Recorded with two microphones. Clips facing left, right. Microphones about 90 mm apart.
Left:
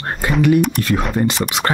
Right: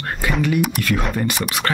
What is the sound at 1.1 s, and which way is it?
Speech, 25° left (ahead or behind).